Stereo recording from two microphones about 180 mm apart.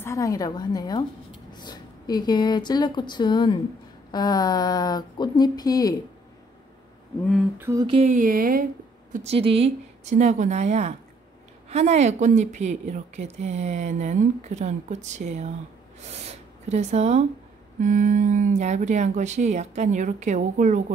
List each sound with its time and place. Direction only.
0.0 s speech: 20° left (ahead or behind)
7.5 s humming: 10° right (ahead or behind)
7.8 s speech: 30° right (ahead or behind)
8.1 s speech: 50° right (ahead or behind)
9.1 s speech: 35° right (ahead or behind)
16.1 s gasp: 35° right (ahead or behind)
17.7 s speech: 45° right (ahead or behind)